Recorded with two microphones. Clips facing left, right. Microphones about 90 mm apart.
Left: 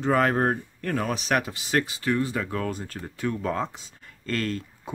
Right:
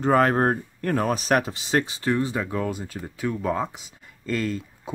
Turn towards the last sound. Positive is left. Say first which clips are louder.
# right 2 dB
turn(degrees=-5)  # may be behind; listen again after turning